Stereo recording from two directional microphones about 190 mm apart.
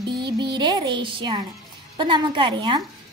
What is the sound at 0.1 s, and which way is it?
A woman's voice, 25° right (ahead or behind).